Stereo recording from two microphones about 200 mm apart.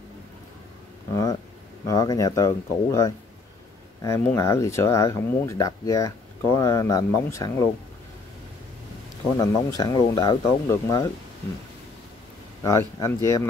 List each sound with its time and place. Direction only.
1.1 s a sound: 15° left (ahead or behind)
1.9 s speech: 15° left (ahead or behind)
9.8 s speech: 20° left (ahead or behind)
12.6 s speech: 15° left (ahead or behind)